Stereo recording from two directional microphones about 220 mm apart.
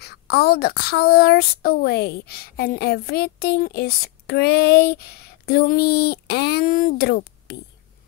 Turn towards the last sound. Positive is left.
turn(degrees=45)  # may be behind; listen again after turning